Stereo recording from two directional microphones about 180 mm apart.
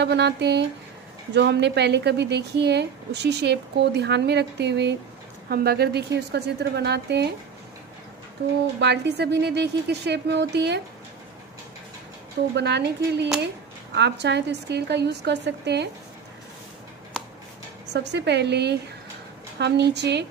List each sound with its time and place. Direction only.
0.0 s speech: 70° right (ahead or behind)
5.5 s a woman's voice: 60° right (ahead or behind)
8.7 s speech: 70° right (ahead or behind)
12.5 s speech: 70° right (ahead or behind)
17.9 s speech: 70° right (ahead or behind)